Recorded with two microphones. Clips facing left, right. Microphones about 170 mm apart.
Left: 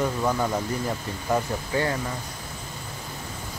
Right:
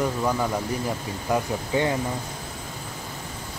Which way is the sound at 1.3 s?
10° right (ahead or behind).